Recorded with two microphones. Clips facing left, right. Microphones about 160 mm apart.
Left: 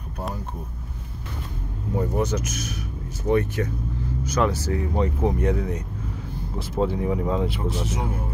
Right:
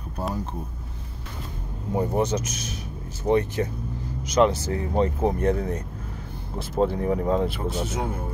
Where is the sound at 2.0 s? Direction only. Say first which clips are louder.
Right 1 dB; 20° right (ahead or behind).